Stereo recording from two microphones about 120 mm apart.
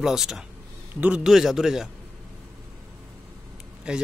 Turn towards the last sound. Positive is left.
turn(degrees=-5)  # may be behind; listen again after turning